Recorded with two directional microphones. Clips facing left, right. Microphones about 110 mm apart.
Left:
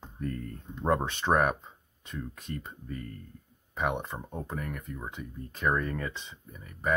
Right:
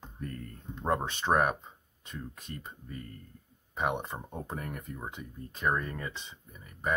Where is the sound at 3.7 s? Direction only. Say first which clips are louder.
Left 1 dB; 10° right (ahead or behind).